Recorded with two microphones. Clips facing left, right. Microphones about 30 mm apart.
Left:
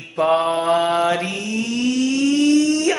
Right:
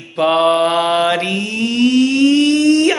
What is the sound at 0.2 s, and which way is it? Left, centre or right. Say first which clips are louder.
Mantra: right 5 dB; right.